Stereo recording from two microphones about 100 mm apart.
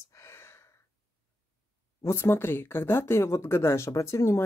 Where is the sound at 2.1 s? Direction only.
25° left (ahead or behind).